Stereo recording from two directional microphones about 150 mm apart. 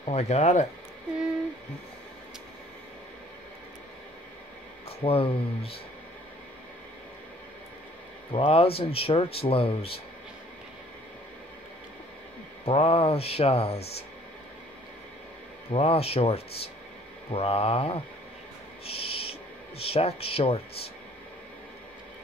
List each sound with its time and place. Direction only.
0.0 s speech: 45° left (ahead or behind)
4.8 s speech: 40° left (ahead or behind)
8.3 s speech: 35° left (ahead or behind)
12.6 s speech: 40° left (ahead or behind)
15.7 s speech: 40° left (ahead or behind)
18.9 s owl: 40° left (ahead or behind)
19.8 s speech: 40° left (ahead or behind)